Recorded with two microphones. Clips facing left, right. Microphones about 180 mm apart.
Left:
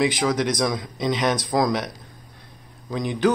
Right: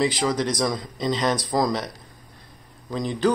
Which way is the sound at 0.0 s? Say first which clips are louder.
Left 1 dB; 5° left (ahead or behind).